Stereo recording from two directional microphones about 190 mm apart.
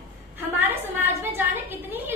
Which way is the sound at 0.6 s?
10° right (ahead or behind).